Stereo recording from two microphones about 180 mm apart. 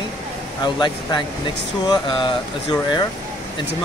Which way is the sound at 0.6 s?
25° left (ahead or behind).